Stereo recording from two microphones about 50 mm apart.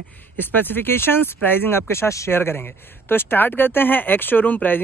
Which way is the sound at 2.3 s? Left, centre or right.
Left.